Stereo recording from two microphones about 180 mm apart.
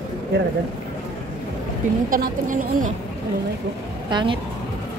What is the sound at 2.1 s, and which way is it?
Speech, 50° right (ahead or behind).